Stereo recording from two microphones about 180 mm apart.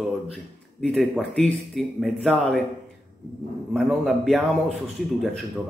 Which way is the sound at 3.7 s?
Centre (ahead or behind).